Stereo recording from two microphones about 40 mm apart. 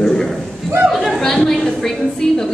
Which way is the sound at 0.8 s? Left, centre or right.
Centre.